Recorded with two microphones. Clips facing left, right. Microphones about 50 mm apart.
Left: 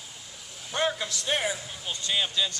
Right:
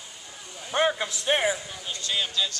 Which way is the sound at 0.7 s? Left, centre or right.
Right.